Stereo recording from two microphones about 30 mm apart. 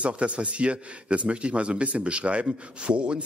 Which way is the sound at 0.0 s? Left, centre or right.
Right.